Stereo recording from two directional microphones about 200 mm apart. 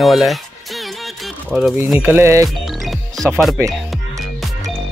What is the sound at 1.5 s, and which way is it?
Speech, 5° right (ahead or behind).